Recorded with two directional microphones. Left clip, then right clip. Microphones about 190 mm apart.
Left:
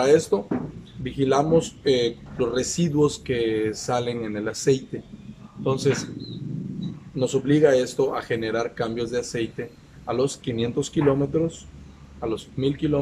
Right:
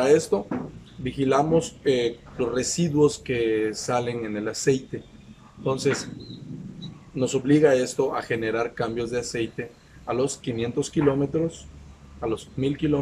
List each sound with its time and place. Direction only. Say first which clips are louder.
0.0 s speech: left 1 dB; 5° right (ahead or behind)
7.2 s speech: even; 5° right (ahead or behind)